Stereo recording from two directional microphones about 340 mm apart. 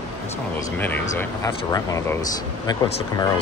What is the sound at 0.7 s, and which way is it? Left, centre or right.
Speech, centre.